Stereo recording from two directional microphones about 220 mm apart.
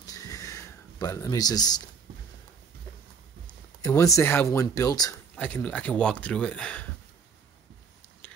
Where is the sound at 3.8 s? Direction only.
15° left (ahead or behind).